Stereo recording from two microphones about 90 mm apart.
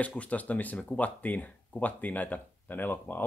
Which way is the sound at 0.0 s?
15° left (ahead or behind).